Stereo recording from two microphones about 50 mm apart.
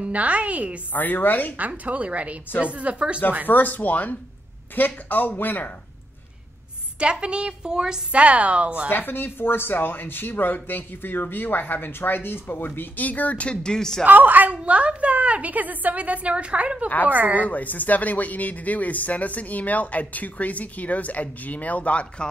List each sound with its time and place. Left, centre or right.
0.0 s a woman's voice: right
0.9 s speech: left
1.6 s a woman's voice: right
3.4 s speech: left
7.0 s a woman's voice: centre
8.1 s a woman's voice: right
8.9 s speech: left; by 14.0 s centre
14.0 s a woman's voice: right
17.1 s a woman's voice: right
17.5 s speech: left